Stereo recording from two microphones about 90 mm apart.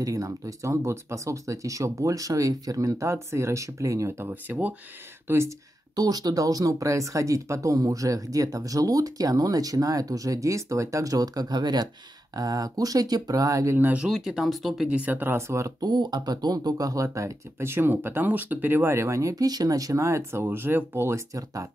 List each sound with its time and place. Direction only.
0.0 s speech: 40° right (ahead or behind)
4.3 s speech: 20° right (ahead or behind)
5.9 s speech: 45° right (ahead or behind)
13.7 s speech: 20° right (ahead or behind)
14.0 s speech: 5° right (ahead or behind)
14.9 s speech: 15° right (ahead or behind); by 15.7 s 35° right (ahead or behind)
15.8 s speech: 50° right (ahead or behind); by 21.6 s 35° right (ahead or behind)